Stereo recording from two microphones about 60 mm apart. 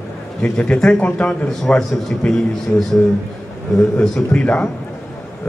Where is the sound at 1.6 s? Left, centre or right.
Centre.